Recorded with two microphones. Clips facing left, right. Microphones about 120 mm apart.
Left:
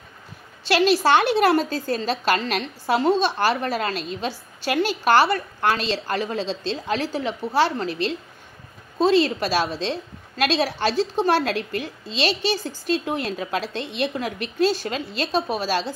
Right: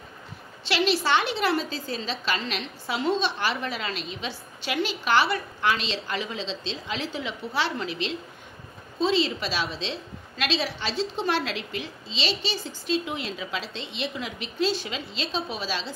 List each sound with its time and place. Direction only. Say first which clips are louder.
0.7 s a woman's voice: left 6 dB; 50° left (ahead or behind)